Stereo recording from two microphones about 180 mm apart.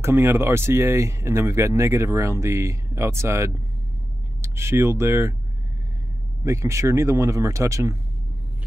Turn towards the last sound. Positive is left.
turn(degrees=-15)  # may be behind; listen again after turning